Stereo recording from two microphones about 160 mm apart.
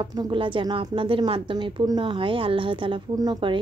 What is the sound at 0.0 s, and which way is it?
A woman's voice, 30° right (ahead or behind).